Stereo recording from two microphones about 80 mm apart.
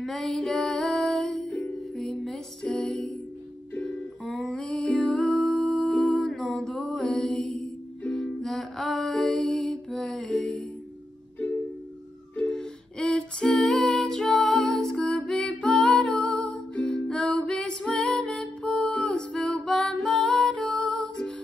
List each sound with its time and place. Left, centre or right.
0.0 s music: centre
1.4 s music: centre
2.0 s music: centre
12.4 s music: centre